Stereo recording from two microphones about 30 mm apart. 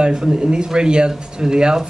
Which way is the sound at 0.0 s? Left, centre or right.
Right.